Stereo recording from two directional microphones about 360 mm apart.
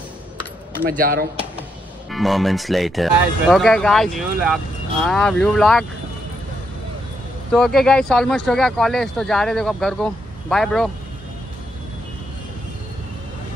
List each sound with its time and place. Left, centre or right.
0.8 s speech: right
2.0 s speech: centre
7.5 s speech: centre